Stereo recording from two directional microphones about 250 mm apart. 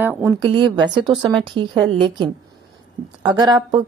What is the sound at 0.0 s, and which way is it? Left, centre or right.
A woman's voice, centre.